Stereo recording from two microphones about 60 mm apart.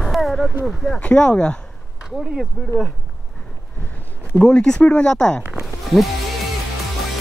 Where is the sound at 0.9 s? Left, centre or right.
Centre.